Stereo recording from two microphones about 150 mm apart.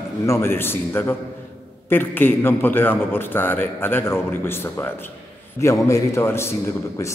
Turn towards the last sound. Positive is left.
turn(degrees=20)  # may be behind; listen again after turning